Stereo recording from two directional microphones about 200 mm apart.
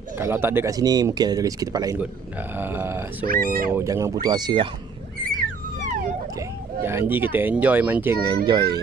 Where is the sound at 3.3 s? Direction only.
45° right (ahead or behind).